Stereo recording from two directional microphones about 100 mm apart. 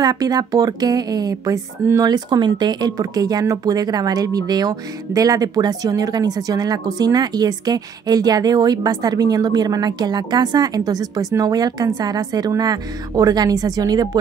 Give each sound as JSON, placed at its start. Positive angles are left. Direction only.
{"t": 0.0, "sound": "speech", "side_deg": -40}